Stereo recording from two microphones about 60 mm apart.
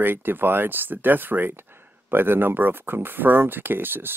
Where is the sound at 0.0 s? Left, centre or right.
Right.